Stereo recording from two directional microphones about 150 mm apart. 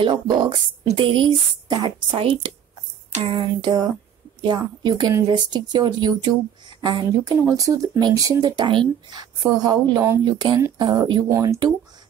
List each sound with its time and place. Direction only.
0.0 s a woman's voice: 30° right (ahead or behind)